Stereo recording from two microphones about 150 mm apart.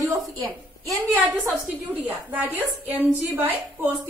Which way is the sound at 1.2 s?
5° right (ahead or behind).